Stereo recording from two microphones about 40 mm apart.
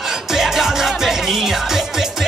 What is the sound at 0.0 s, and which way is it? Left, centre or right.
Music, centre.